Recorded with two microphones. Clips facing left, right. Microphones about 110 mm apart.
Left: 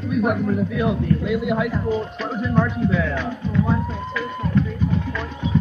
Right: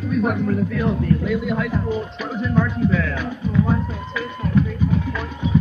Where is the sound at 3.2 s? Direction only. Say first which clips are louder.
Right 1 dB; 10° right (ahead or behind).